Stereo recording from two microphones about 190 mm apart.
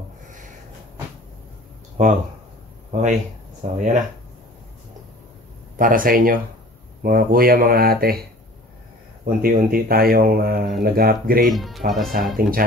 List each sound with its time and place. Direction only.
2.9 s speech: 40° right (ahead or behind)
5.8 s speech: 45° right (ahead or behind)
9.2 s speech: 50° right (ahead or behind)
11.5 s speech: centre (ahead or behind)
12.4 s speech: 50° right (ahead or behind)